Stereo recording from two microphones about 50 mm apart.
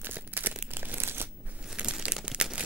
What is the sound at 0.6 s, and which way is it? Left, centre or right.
Crumpling, right.